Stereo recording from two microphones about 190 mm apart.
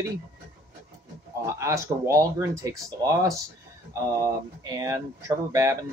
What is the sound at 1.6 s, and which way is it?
Speech, 15° right (ahead or behind).